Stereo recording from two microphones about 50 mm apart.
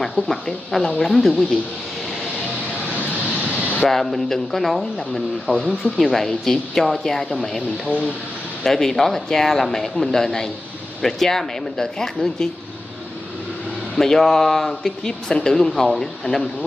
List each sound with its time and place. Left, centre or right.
0.1 s speech: centre
3.3 s vehicle: left
3.8 s speech: centre
5.5 s speech: left
5.9 s speech: centre
8.6 s speech: centre
13.9 s speech: centre